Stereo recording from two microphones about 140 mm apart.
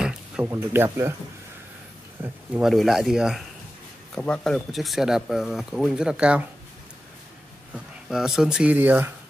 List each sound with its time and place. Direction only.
0.0 s a sound: 5° right (ahead or behind)
0.5 s speech: 20° right (ahead or behind)
2.2 s speech: 10° right (ahead or behind)
4.1 s speech: 5° left (ahead or behind)
7.7 s speech: 5° right (ahead or behind)